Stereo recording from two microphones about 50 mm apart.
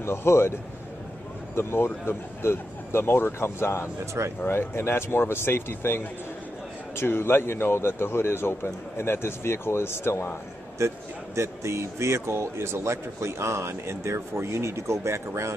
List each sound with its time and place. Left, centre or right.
0.0 s a man's voice: left
4.0 s a man's voice: right
4.5 s a man's voice: left
10.8 s a man's voice: right
11.3 s a man's voice: right